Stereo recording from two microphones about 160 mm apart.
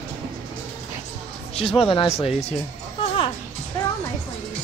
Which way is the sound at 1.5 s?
35° left (ahead or behind).